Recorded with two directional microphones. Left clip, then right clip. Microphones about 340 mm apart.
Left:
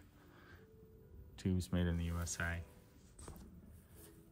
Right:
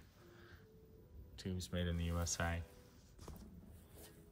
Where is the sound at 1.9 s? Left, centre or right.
Centre.